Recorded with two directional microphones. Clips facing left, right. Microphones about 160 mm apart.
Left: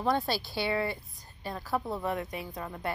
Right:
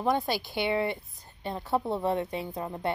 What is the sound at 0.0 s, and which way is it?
A woman's voice, 15° right (ahead or behind).